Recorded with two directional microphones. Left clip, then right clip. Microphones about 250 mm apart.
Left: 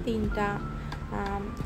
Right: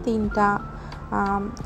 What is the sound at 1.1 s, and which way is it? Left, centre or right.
Speech, centre.